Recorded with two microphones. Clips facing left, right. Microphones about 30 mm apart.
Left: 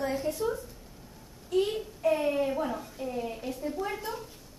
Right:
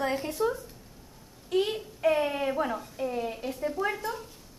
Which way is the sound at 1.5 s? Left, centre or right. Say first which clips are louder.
Even; right.